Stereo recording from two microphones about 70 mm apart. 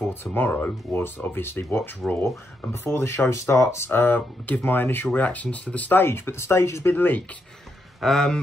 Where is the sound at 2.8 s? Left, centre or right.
Left.